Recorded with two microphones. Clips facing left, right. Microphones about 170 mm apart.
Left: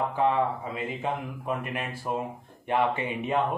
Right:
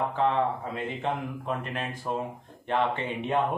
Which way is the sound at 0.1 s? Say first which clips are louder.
Left 1 dB; 5° left (ahead or behind).